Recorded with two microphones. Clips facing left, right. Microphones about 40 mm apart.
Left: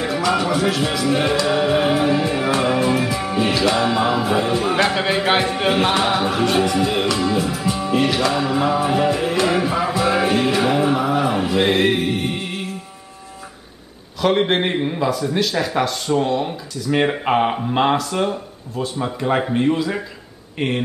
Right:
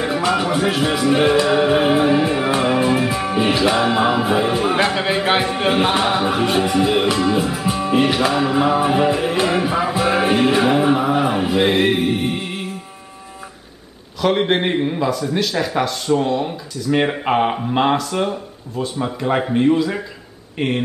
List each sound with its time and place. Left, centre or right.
0.0 s music: centre
4.8 s speech: centre
6.6 s music: centre
14.2 s speech: centre